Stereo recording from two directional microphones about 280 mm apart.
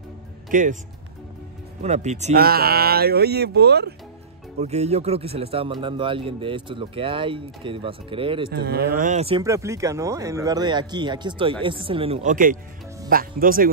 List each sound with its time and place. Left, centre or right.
0.5 s speech: right
1.8 s speech: right
4.6 s speech: right
8.5 s speech: right